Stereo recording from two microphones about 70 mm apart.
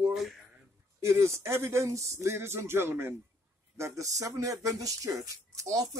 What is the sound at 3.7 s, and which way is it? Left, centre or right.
Speech, right.